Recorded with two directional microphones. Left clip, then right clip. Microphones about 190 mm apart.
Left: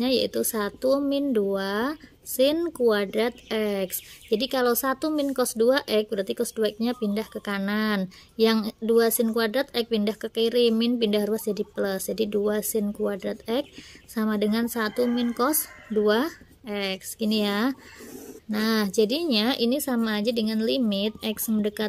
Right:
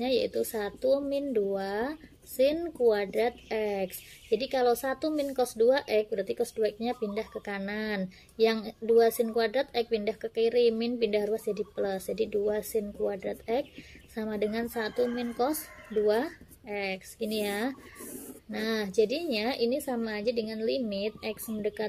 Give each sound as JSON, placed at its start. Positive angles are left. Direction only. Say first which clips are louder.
{"t": 0.0, "sound": "speech", "louder": "left 4 dB", "side_deg": 45}